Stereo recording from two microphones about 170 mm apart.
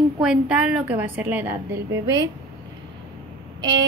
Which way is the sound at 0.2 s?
5° right (ahead or behind).